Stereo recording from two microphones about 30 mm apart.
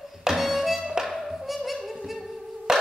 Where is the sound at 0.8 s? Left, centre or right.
Centre.